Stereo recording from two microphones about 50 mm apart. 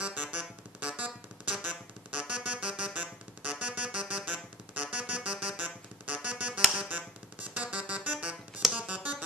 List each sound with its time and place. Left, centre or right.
0.0 s music: right
4.2 s saxophone: right
4.9 s music: right